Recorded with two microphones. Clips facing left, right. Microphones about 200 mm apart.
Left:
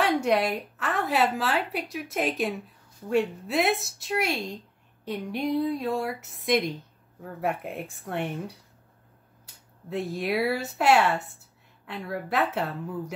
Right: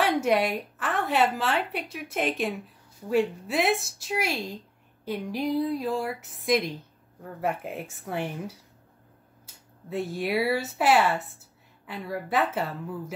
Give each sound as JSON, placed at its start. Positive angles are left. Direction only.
{"t": 0.0, "sound": "a woman's voice", "side_deg": 0}